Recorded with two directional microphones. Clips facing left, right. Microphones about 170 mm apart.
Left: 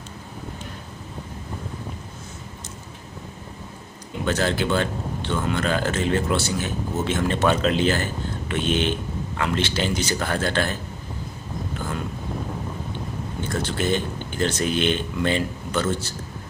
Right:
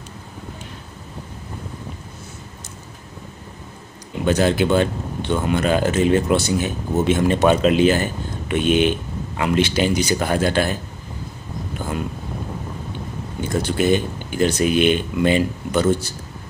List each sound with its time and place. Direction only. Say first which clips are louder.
4.2 s speech: right 6 dB; 15° right (ahead or behind)
13.4 s speech: right 6 dB; 15° right (ahead or behind)